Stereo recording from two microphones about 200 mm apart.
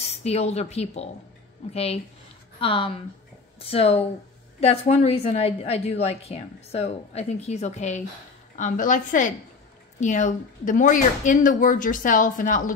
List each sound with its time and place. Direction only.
0.0 s a woman's voice: 30° left (ahead or behind)